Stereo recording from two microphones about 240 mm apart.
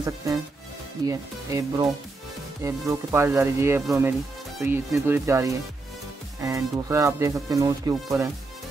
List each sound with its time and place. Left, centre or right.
1.0 s speech: centre